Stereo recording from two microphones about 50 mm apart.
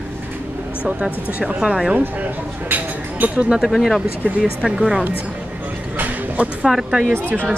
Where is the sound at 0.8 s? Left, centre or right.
Centre.